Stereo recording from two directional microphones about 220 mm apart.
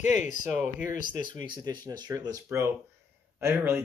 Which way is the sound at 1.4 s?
20° right (ahead or behind).